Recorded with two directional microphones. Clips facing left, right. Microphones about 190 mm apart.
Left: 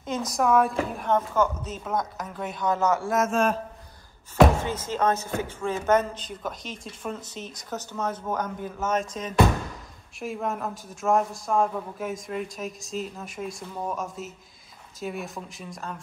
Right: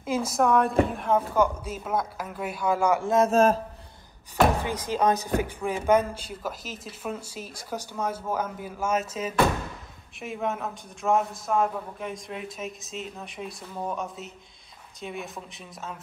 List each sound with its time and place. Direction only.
0.3 s speech: centre (ahead or behind)
1.1 s speech: 10° right (ahead or behind)
3.1 s speech: 35° right (ahead or behind)
4.6 s speech: 15° right (ahead or behind)